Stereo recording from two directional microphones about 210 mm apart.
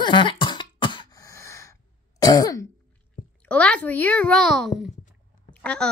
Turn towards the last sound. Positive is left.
turn(degrees=5)  # may be behind; listen again after turning